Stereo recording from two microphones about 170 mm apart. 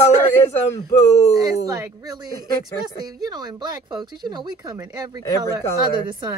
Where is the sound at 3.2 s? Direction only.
25° right (ahead or behind).